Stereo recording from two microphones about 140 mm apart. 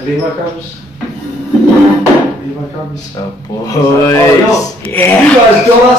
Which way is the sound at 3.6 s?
25° left (ahead or behind).